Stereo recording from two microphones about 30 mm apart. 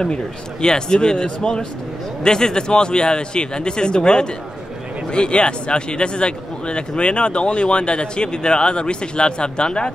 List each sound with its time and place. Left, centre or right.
0.0 s speech: left